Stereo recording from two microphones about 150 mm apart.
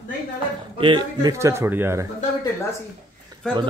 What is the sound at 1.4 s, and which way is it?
Speech, 15° right (ahead or behind).